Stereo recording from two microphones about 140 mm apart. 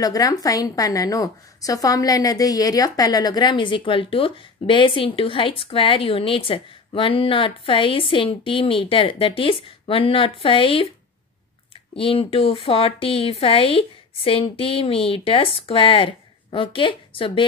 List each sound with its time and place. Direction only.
0.0 s a woman's voice: 25° left (ahead or behind)
11.9 s a woman's voice: 40° left (ahead or behind)